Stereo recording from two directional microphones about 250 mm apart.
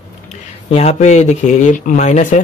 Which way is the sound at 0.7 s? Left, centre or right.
Left.